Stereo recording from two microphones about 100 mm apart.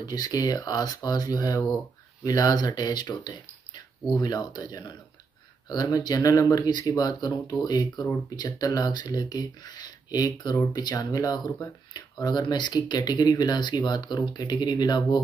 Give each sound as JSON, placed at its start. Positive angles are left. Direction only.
{"t": 0.0, "sound": "speech", "side_deg": 40}